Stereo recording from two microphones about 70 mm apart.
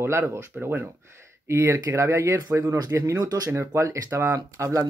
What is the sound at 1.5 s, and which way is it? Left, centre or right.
Speech, right.